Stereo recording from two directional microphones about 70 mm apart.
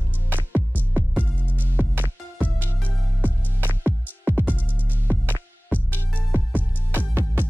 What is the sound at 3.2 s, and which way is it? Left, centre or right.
Music, right.